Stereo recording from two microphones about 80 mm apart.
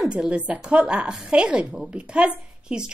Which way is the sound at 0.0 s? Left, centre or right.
Centre.